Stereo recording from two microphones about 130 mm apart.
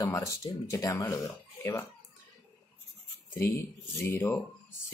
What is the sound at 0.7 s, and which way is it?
Speech, 20° left (ahead or behind).